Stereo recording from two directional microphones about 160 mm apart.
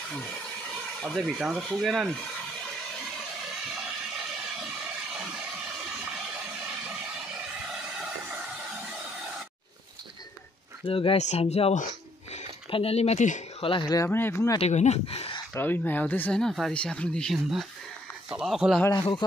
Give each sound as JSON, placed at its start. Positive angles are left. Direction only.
{"t": 1.0, "sound": "speech", "side_deg": 0}
{"t": 10.9, "sound": "speech", "side_deg": 35}
{"t": 13.6, "sound": "speech", "side_deg": 30}
{"t": 14.6, "sound": "speech", "side_deg": 45}
{"t": 15.5, "sound": "speech", "side_deg": 10}
{"t": 18.9, "sound": "speech", "side_deg": 30}